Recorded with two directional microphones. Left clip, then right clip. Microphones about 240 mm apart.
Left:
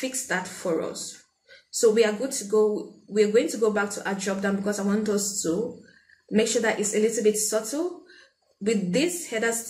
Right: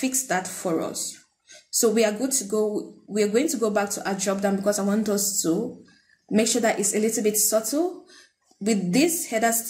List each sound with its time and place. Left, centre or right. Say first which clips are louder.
0.0 s speech: right 3 dB; right